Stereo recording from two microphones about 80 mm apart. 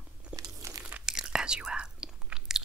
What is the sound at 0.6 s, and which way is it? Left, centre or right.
Crunch, right.